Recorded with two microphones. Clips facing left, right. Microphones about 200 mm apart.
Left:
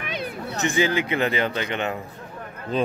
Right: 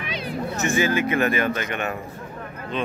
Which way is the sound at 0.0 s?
55° left (ahead or behind).